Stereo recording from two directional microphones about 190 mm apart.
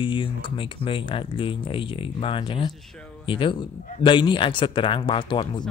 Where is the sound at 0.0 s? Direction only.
25° left (ahead or behind).